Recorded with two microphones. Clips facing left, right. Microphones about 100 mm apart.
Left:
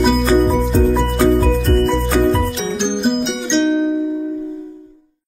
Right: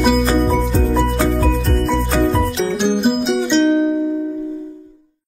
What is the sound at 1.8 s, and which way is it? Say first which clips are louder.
Music: even; centre (ahead or behind).